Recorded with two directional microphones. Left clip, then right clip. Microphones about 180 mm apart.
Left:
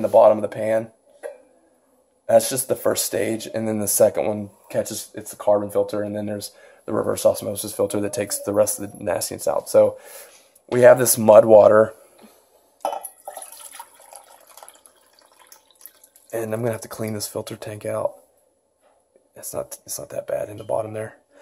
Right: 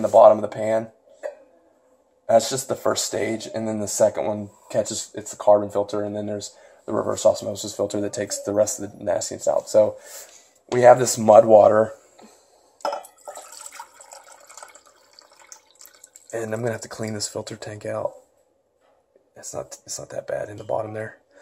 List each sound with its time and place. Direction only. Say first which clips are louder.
0.0 s speech: right 1 dB; 15° left (ahead or behind)
2.2 s speech: left 1 dB; 15° left (ahead or behind)
5.1 s speech: right 3 dB; 5° left (ahead or behind)
5.9 s speech: even; 30° left (ahead or behind)
12.8 s water: left 1 dB; 5° right (ahead or behind)
16.3 s speech: left 2 dB; 15° left (ahead or behind)
19.5 s speech: left 3 dB; 25° left (ahead or behind)